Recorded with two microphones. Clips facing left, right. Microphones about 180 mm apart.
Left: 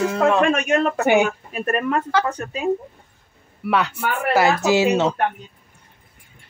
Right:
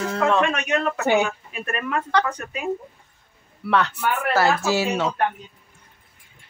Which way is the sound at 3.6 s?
10° left (ahead or behind).